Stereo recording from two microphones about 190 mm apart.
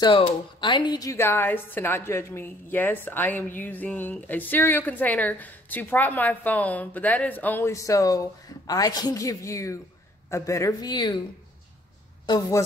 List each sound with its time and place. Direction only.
0.0 s a woman's voice: 25° left (ahead or behind)
12.3 s a woman's voice: 20° left (ahead or behind)